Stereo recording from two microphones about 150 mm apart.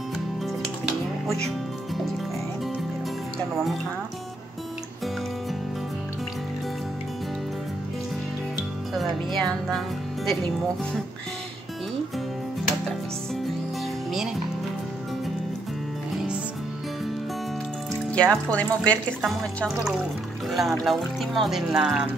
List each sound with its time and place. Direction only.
1.2 s music: 5° left (ahead or behind)
8.9 s speech: centre (ahead or behind)
18.1 s speech: 10° left (ahead or behind)
20.4 s music: centre (ahead or behind)
20.8 s speech: centre (ahead or behind)